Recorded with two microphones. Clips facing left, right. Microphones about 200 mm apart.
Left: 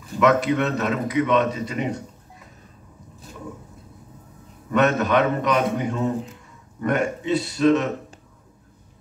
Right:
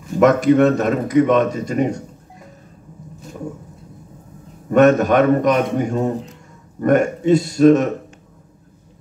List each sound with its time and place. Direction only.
0.2 s speech: 45° right (ahead or behind)
4.6 s speech: 45° right (ahead or behind)